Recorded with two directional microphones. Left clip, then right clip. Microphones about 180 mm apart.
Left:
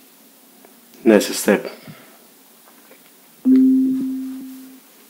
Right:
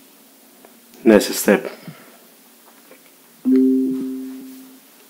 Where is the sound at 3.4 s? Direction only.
20° left (ahead or behind).